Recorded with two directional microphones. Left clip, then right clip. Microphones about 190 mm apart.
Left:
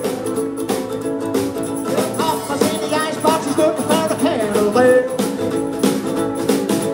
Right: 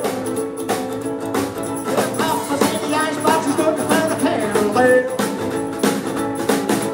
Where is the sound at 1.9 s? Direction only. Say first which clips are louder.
Even; 25° left (ahead or behind).